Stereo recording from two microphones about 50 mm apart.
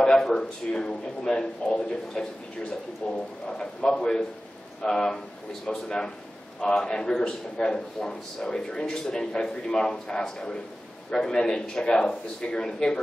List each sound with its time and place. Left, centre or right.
0.0 s a man's voice: centre